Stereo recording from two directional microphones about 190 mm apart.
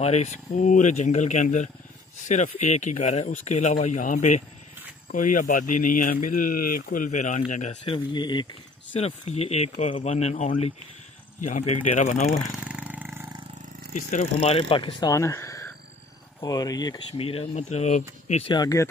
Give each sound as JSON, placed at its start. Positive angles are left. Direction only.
{"t": 0.0, "sound": "speech", "side_deg": 35}
{"t": 8.9, "sound": "speech", "side_deg": 35}
{"t": 12.6, "sound": "roar", "side_deg": -5}
{"t": 13.9, "sound": "speech", "side_deg": 40}
{"t": 18.5, "sound": "speech", "side_deg": 20}